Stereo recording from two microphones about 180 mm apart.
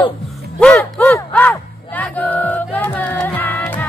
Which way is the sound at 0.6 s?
10° left (ahead or behind).